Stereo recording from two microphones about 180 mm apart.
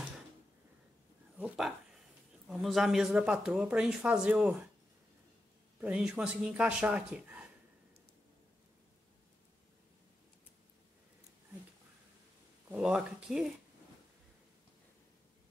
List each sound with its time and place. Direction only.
2.4 s speech: centre (ahead or behind)
5.8 s speech: 5° right (ahead or behind)
12.6 s speech: 5° right (ahead or behind)